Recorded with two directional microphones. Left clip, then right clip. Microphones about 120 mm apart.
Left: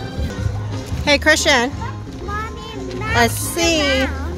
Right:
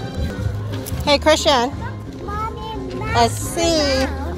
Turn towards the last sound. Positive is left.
turn(degrees=30)  # may be behind; listen again after turning